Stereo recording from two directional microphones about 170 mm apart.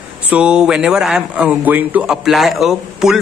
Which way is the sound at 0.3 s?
5° right (ahead or behind).